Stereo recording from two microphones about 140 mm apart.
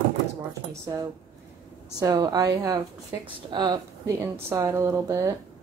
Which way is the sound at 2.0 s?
25° right (ahead or behind).